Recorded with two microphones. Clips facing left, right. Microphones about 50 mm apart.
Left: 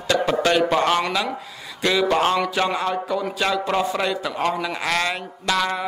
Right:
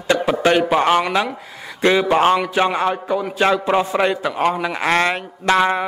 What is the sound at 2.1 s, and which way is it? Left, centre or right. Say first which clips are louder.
Speech: right 4 dB; right.